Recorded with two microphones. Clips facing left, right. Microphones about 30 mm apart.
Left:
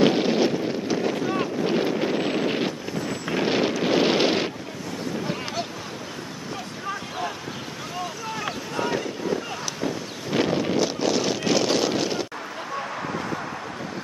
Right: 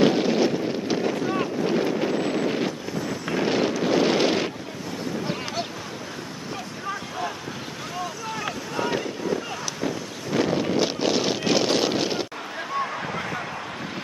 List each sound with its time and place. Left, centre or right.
0.0 s wind noise: centre
1.0 s boat: centre
1.7 s wind noise: centre
2.9 s vehicle: centre
3.8 s wind noise: centre
6.9 s boat: centre
8.4 s boat: centre
10.3 s wind noise: centre
10.8 s a sound: centre